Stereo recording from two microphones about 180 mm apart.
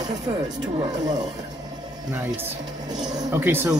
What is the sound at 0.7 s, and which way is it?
Speech, 25° right (ahead or behind).